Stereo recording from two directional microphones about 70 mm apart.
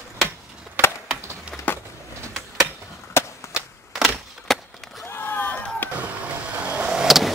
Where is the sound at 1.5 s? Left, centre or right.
Centre.